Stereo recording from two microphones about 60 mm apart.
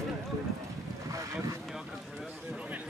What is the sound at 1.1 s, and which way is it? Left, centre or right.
Boat, right.